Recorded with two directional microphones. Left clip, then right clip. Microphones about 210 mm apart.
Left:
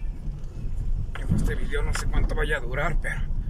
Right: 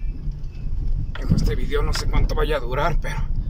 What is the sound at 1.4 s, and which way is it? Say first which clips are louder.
Speech: right 7 dB; 20° right (ahead or behind).